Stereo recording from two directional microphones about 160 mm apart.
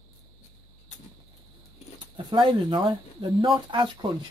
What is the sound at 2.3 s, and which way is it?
Speech, 25° right (ahead or behind).